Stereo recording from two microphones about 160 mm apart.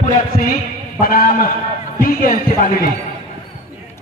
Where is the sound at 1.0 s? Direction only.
60° left (ahead or behind).